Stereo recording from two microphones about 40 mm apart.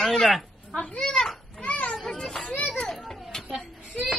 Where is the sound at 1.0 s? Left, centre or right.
Centre.